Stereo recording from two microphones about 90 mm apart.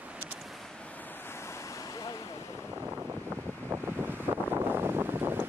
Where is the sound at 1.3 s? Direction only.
30° left (ahead or behind).